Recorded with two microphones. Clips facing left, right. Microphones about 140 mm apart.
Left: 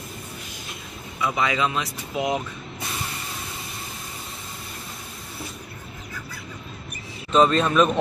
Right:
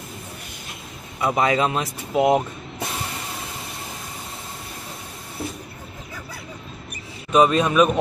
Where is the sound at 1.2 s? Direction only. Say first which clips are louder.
Right 4 dB; 40° right (ahead or behind).